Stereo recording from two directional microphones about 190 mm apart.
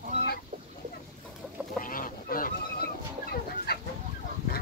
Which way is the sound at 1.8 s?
45° left (ahead or behind).